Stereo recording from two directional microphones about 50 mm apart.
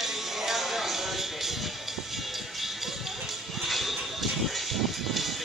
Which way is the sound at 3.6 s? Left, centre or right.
Centre.